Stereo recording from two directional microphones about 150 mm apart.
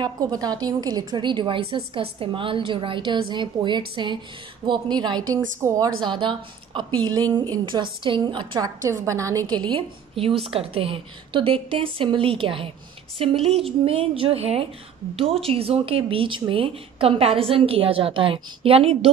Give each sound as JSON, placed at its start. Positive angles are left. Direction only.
{"t": 0.0, "sound": "a woman's voice", "side_deg": -25}
{"t": 6.0, "sound": "a woman's voice", "side_deg": -30}